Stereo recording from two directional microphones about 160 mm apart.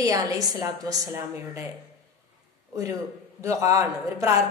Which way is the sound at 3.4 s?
20° right (ahead or behind).